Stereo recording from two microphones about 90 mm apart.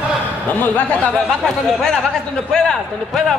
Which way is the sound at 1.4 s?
Centre (ahead or behind).